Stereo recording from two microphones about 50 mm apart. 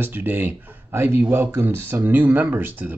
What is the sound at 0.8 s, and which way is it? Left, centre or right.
A man's voice, right.